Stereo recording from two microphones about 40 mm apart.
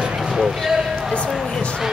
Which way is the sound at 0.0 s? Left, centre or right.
Centre.